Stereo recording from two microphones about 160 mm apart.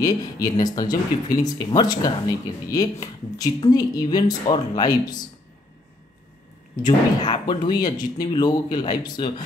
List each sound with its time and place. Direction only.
0.0 s speech: 25° left (ahead or behind)
6.8 s speech: 25° left (ahead or behind)